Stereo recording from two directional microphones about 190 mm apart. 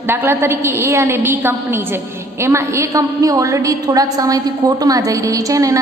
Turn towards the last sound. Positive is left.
turn(degrees=-15)  # may be behind; listen again after turning